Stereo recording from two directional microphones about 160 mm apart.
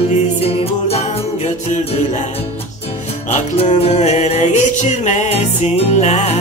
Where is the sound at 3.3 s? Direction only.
40° left (ahead or behind).